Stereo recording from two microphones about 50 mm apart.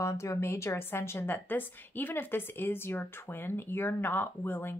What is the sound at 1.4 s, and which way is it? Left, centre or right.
Speech, left.